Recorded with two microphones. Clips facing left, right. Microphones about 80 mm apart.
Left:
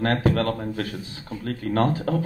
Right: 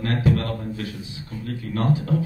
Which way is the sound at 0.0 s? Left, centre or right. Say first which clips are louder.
Left 2 dB; left.